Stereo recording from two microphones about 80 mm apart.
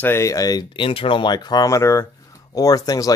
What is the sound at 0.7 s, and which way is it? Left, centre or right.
Speech, left.